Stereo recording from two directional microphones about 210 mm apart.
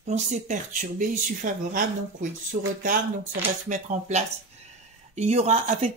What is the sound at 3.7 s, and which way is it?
Speech, 35° right (ahead or behind).